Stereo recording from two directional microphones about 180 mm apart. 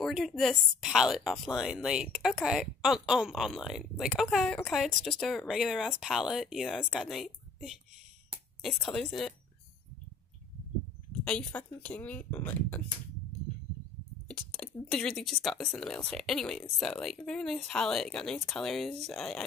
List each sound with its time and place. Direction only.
0.0 s a woman's voice: centre (ahead or behind)
11.2 s speech: 5° left (ahead or behind)
14.2 s speech: 5° left (ahead or behind)